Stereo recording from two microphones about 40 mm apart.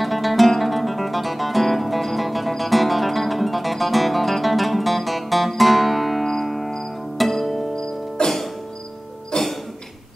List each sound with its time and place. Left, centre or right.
0.0 s music: centre
7.7 s music: centre
9.3 s music: centre